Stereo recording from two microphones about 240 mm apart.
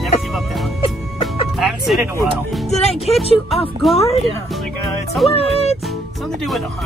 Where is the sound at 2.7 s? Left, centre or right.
Left.